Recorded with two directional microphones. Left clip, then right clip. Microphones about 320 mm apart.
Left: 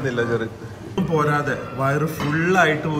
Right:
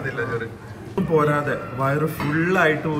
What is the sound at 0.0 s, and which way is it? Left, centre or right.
A man's voice, centre.